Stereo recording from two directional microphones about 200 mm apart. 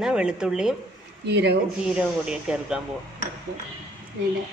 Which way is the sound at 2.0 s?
5° right (ahead or behind).